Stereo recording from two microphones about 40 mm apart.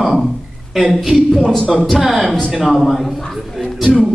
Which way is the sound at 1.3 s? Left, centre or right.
Centre.